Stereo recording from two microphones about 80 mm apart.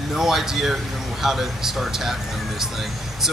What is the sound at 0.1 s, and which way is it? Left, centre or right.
Speech, centre.